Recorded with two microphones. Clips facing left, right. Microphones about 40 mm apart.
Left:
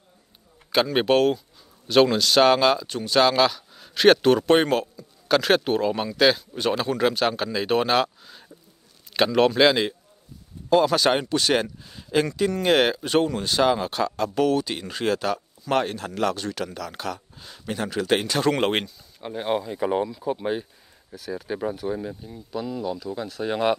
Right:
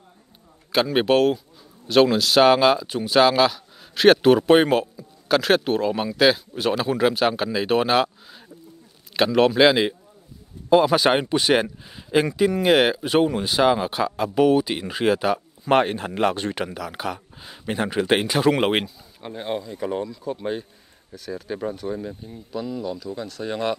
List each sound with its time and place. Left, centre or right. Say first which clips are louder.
0.7 s speech: right 1 dB; centre
15.6 s speech: right 5 dB; right
16.7 s speech: right 2 dB; centre
19.3 s speech: left 3 dB; centre